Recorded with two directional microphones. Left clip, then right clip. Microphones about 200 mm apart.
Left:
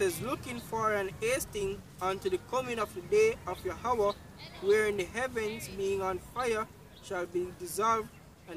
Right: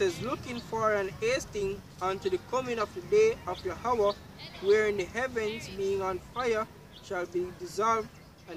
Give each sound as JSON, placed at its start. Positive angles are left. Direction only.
{"t": 0.2, "sound": "speech", "side_deg": 15}